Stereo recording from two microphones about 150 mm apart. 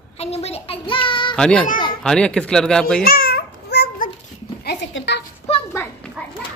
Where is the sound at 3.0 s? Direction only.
90° left.